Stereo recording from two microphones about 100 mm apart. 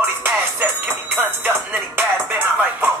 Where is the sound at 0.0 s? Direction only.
20° right (ahead or behind).